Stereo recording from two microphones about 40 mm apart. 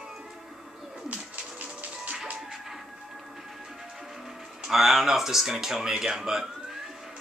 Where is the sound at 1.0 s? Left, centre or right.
Right.